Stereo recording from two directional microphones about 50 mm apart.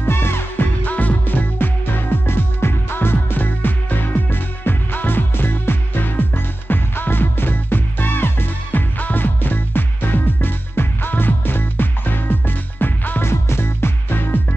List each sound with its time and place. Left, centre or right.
0.0 s music: left
0.8 s music: left
13.2 s music: left